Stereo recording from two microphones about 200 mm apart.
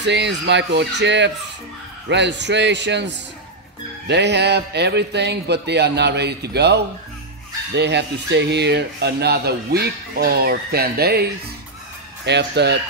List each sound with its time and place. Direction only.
0.0 s a man's voice: 60° right (ahead or behind)